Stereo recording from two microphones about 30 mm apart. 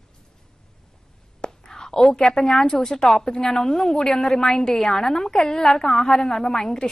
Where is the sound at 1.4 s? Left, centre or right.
Left.